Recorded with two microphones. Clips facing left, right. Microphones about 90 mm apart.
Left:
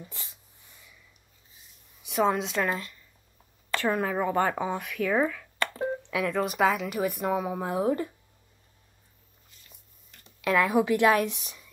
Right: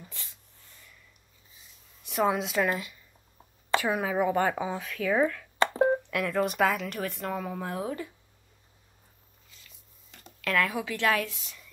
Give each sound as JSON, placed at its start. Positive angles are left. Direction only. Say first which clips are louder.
{"t": 0.1, "sound": "a sound", "louder": "left 2 dB", "side_deg": 20}
{"t": 2.0, "sound": "speech", "louder": "left 1 dB", "side_deg": 0}
{"t": 7.1, "sound": "speech", "louder": "left 5 dB", "side_deg": 15}
{"t": 10.4, "sound": "a woman's voice", "louder": "left 5 dB", "side_deg": 20}